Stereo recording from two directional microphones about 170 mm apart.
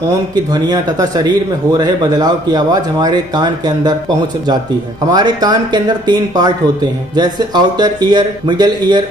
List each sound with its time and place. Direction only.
0.5 s speech: 25° right (ahead or behind)
5.0 s speech: 25° right (ahead or behind)